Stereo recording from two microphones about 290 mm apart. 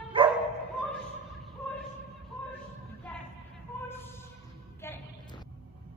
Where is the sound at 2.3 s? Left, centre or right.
Centre.